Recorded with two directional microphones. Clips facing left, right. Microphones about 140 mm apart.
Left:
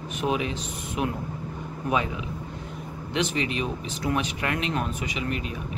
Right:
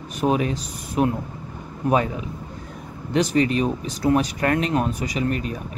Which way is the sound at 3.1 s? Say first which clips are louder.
Right 8 dB; 40° right (ahead or behind).